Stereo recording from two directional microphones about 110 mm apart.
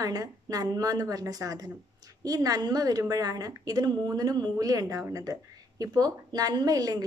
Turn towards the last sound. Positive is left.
turn(degrees=-35)  # may be behind; listen again after turning